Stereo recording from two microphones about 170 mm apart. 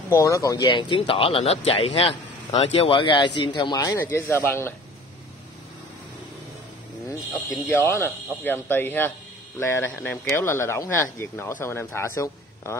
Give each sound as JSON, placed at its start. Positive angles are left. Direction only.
{"t": 0.1, "sound": "speech", "side_deg": 20}
{"t": 7.6, "sound": "speech", "side_deg": 15}